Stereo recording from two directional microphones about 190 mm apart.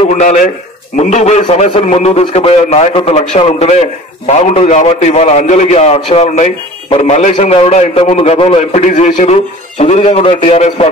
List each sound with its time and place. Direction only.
0.1 s a man's voice: 40° left (ahead or behind)